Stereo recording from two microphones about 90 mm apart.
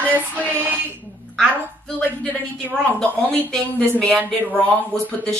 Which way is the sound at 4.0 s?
10° left (ahead or behind).